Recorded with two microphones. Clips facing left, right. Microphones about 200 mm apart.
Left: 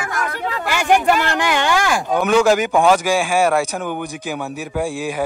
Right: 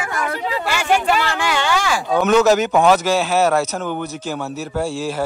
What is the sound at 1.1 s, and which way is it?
Speech, 55° left (ahead or behind).